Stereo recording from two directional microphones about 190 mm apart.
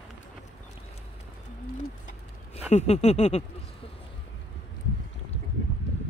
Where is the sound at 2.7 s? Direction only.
35° left (ahead or behind).